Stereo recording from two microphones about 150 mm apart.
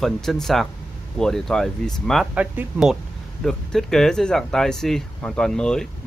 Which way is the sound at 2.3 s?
10° right (ahead or behind).